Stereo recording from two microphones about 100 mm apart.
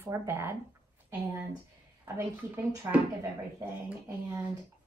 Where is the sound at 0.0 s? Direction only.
25° right (ahead or behind).